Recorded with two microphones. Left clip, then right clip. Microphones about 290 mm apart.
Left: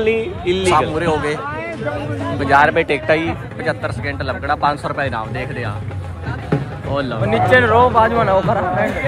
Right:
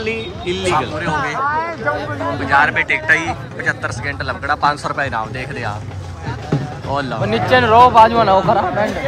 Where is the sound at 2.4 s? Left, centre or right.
Centre.